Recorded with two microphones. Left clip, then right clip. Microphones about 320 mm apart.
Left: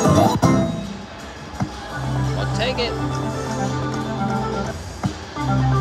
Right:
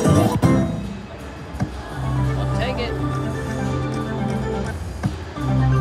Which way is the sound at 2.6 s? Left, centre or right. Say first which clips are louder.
Left 4 dB; centre.